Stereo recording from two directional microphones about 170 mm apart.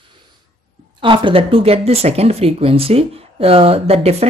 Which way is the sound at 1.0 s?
30° right (ahead or behind).